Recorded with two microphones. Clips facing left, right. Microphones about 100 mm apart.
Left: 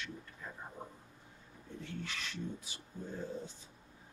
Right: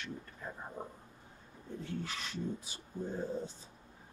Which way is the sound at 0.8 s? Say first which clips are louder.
Right 5 dB; 50° right (ahead or behind).